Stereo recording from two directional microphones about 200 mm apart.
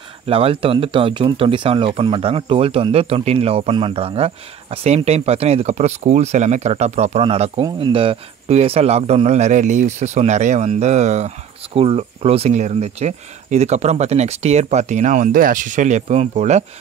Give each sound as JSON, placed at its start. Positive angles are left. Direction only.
{"t": 0.3, "sound": "speech", "side_deg": -30}